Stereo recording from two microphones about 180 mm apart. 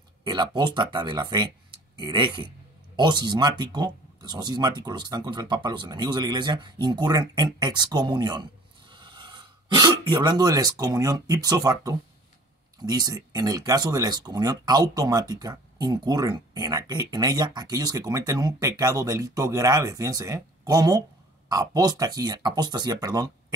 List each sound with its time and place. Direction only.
0.2 s speech: 25° right (ahead or behind)